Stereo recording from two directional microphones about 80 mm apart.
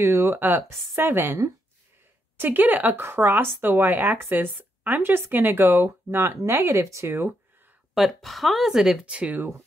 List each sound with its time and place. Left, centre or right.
0.0 s speech: right
7.9 s speech: centre